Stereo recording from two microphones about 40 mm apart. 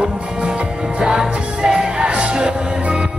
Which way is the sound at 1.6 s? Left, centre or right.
Centre.